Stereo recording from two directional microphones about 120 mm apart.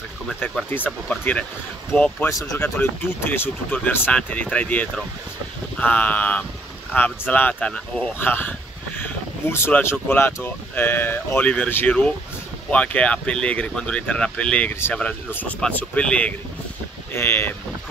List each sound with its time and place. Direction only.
0.7 s speech: 15° left (ahead or behind)